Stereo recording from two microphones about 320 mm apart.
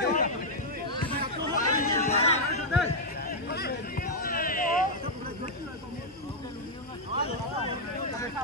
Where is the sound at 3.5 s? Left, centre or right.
Left.